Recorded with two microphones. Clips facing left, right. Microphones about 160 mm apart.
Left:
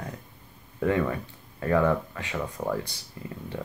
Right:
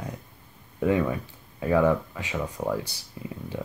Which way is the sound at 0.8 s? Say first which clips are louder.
Right 1 dB; 10° right (ahead or behind).